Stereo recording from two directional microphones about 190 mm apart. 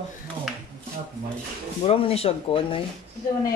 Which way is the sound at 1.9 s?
30° left (ahead or behind).